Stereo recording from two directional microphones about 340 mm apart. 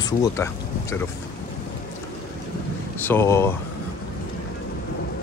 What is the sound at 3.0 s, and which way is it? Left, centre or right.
Speech, centre.